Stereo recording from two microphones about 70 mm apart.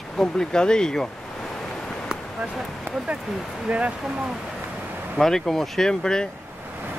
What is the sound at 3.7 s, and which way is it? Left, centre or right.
Speech, centre.